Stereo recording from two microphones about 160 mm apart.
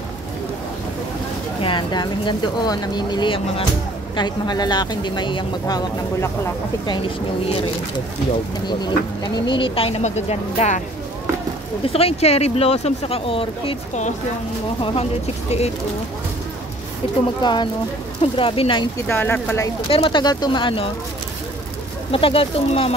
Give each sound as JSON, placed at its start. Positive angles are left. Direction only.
{"t": 1.6, "sound": "speech", "side_deg": 30}
{"t": 7.4, "sound": "speech", "side_deg": 35}
{"t": 11.8, "sound": "speech", "side_deg": 40}
{"t": 17.4, "sound": "speech", "side_deg": 30}
{"t": 19.0, "sound": "speech", "side_deg": 15}
{"t": 19.9, "sound": "speech", "side_deg": 35}
{"t": 22.1, "sound": "speech", "side_deg": 35}